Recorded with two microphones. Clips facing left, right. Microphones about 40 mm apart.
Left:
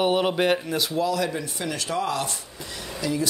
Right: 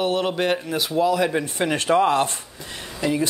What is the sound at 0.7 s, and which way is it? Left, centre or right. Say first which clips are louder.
Speech: right 4 dB; centre.